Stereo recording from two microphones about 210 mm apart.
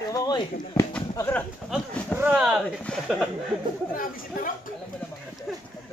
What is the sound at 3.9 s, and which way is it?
Speech, 40° left (ahead or behind).